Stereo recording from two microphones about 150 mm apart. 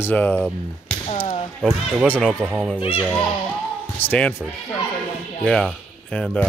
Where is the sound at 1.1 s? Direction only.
40° left (ahead or behind).